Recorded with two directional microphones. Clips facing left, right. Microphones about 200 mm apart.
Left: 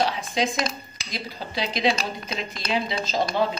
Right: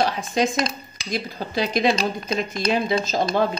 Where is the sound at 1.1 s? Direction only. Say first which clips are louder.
Right 6 dB; 50° right (ahead or behind).